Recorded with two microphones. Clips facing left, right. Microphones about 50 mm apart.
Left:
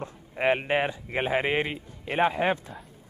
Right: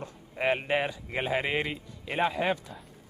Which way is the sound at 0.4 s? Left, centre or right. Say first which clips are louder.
Left 3 dB; centre.